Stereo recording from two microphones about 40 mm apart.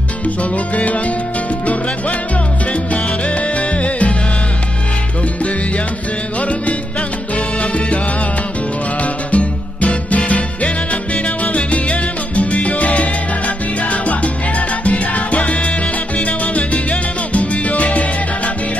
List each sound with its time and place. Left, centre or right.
0.4 s music: left
2.7 s salsa music: left
7.3 s salsa music: left
9.0 s music: left
16.2 s salsa music: left